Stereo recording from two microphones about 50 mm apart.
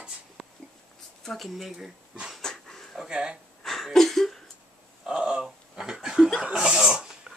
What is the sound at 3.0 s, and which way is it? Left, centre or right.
Speech, centre.